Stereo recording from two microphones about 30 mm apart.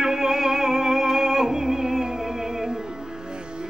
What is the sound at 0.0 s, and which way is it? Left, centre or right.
Music, centre.